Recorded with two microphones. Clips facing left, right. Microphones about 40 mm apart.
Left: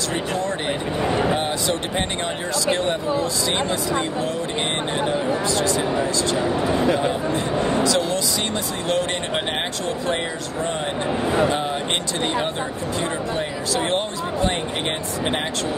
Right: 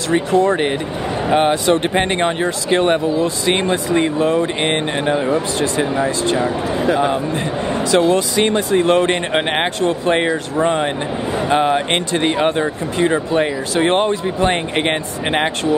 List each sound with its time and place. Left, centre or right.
1.3 s speech: right
6.4 s speech: centre
7.8 s speech: right